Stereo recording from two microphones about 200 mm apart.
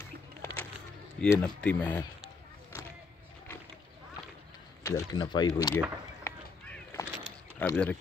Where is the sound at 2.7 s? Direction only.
10° left (ahead or behind).